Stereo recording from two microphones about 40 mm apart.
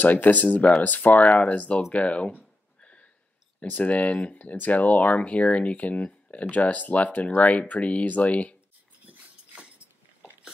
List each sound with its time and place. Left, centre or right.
0.0 s speech: left
1.9 s a sound: left
3.7 s speech: left